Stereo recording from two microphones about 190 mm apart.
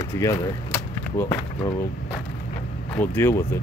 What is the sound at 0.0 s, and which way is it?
Speech, 15° left (ahead or behind).